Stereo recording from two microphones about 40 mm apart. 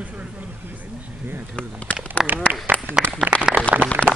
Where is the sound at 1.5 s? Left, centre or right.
Left.